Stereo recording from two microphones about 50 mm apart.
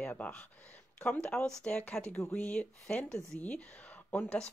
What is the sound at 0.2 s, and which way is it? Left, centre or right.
Speech, left.